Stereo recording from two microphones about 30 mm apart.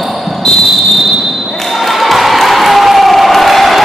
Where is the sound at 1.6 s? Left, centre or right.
Centre.